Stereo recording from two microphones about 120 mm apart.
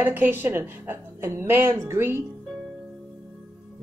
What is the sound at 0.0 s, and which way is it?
Speech, 15° right (ahead or behind).